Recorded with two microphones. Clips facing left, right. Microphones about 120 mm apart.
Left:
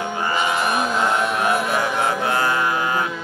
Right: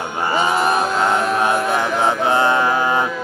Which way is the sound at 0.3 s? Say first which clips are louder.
Right 5 dB; 35° right (ahead or behind).